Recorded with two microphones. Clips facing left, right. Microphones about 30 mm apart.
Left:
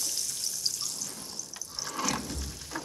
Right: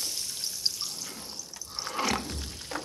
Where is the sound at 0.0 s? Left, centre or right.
Right.